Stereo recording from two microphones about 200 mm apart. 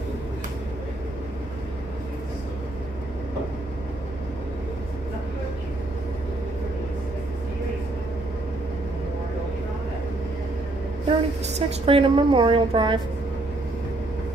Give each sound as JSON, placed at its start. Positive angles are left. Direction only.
{"t": 11.1, "sound": "a woman's voice", "side_deg": -30}